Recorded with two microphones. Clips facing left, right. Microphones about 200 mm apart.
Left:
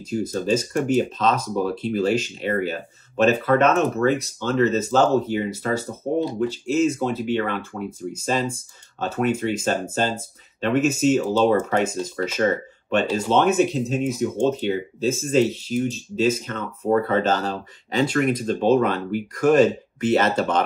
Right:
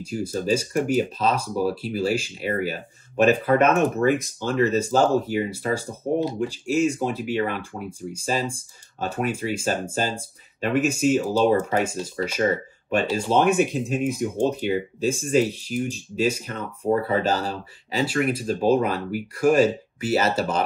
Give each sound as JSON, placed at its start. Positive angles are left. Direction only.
{"t": 0.0, "sound": "speech", "side_deg": -10}